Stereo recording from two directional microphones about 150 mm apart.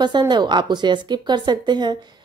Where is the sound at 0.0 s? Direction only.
30° right (ahead or behind).